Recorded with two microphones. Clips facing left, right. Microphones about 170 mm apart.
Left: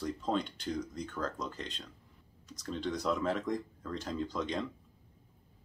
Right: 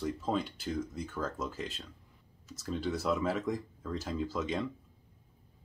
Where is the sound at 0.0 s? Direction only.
5° right (ahead or behind).